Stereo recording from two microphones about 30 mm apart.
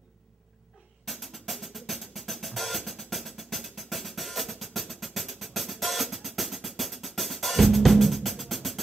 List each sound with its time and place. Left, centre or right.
1.0 s drum: centre